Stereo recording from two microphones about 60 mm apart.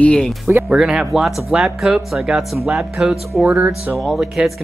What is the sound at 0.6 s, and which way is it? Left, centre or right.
Speech, centre.